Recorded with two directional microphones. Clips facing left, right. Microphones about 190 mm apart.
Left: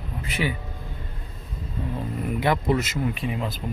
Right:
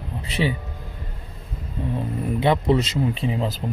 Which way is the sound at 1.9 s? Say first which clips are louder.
Right 3 dB; 25° right (ahead or behind).